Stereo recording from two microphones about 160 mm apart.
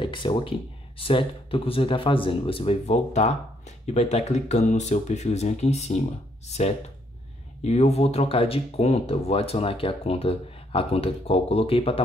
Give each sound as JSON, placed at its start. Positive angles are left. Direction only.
{"t": 0.0, "sound": "speech", "side_deg": 30}
{"t": 7.6, "sound": "speech", "side_deg": 40}